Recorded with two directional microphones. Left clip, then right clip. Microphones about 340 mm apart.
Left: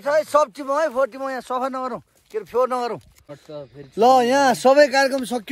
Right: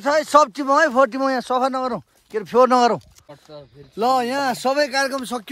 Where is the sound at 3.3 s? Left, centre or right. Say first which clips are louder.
Left 5 dB; centre.